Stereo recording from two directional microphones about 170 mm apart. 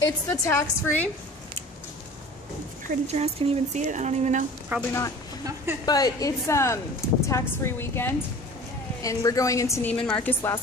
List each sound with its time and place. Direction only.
0.0 s a woman's voice: 20° left (ahead or behind)
2.9 s speech: 40° right (ahead or behind)
4.7 s speech: 10° right (ahead or behind)
5.9 s a woman's voice: 20° left (ahead or behind)